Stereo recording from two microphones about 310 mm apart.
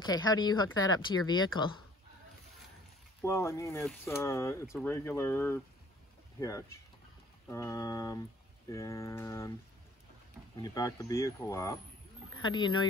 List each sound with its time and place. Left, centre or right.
0.1 s speech: centre
3.2 s speech: centre
10.5 s speech: centre